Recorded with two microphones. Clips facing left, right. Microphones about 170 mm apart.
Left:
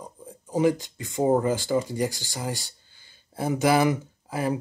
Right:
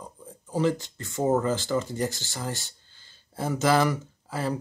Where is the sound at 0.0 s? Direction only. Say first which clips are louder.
Left 2 dB; 15° left (ahead or behind).